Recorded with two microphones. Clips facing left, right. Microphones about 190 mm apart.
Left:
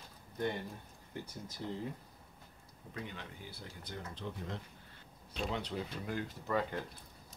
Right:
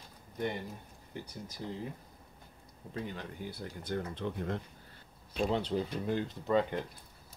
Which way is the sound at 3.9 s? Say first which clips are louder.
Right 8 dB; 60° right (ahead or behind).